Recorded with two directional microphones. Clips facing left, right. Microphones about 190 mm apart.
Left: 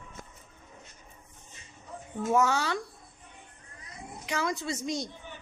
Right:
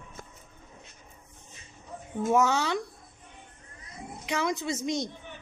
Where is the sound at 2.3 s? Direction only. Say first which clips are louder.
Right 1 dB; 20° right (ahead or behind).